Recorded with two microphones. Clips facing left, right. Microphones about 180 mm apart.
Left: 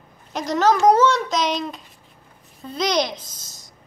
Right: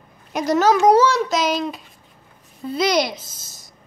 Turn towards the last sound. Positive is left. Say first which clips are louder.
# even
turn(degrees=15)  # may be behind; listen again after turning